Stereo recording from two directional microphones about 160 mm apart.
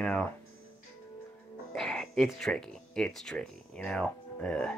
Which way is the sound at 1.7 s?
Centre (ahead or behind).